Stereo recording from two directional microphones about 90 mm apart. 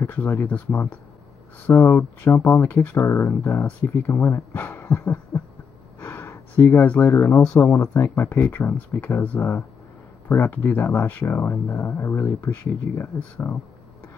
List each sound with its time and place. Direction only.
0.0 s speech: 20° left (ahead or behind)
4.6 s a sound: 25° left (ahead or behind)
5.9 s speech: 30° left (ahead or behind)